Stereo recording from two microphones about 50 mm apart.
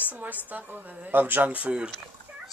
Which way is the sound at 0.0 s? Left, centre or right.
Right.